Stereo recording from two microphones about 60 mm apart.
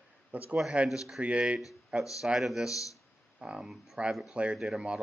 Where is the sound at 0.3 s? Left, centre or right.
Right.